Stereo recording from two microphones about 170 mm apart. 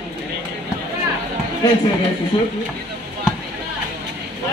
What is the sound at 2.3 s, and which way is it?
Speech, 35° left (ahead or behind).